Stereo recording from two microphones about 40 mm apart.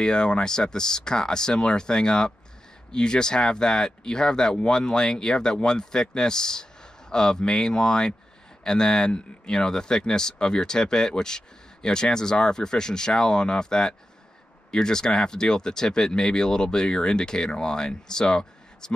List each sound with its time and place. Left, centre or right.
0.0 s speech: left